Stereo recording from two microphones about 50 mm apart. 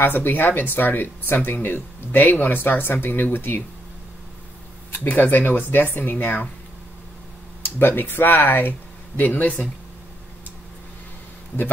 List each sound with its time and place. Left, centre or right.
0.0 s speech: left
4.9 s speech: left
7.6 s speech: left